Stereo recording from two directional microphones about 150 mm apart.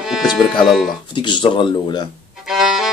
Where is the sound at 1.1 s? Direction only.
30° left (ahead or behind).